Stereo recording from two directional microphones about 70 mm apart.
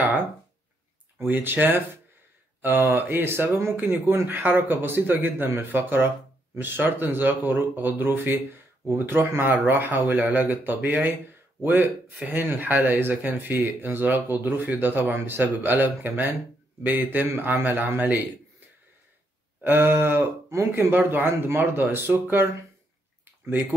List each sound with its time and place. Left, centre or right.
1.1 s speech: right
19.6 s speech: right
20.9 s speech: right